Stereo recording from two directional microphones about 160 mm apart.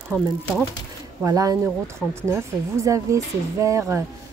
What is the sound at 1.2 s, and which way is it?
Speech, 20° right (ahead or behind).